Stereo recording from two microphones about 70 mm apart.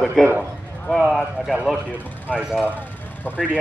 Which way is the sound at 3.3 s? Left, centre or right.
Left.